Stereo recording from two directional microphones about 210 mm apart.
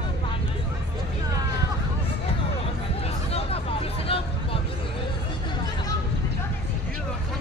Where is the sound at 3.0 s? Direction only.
30° left (ahead or behind).